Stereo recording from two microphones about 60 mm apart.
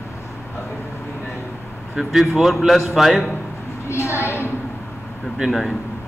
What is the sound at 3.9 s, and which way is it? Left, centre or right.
Speech, left.